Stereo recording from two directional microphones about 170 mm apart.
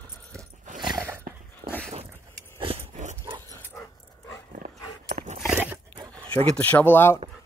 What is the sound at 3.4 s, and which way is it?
Dog, 15° left (ahead or behind).